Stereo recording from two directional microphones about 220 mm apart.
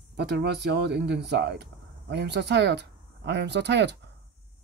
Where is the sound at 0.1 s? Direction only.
50° right (ahead or behind).